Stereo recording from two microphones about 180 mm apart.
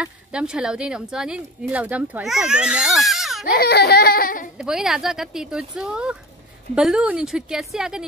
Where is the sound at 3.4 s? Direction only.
60° left (ahead or behind).